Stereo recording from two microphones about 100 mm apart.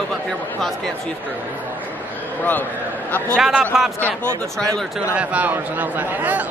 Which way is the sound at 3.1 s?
20° left (ahead or behind).